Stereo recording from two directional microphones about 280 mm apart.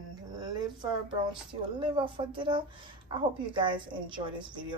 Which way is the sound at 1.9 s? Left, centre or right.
Centre.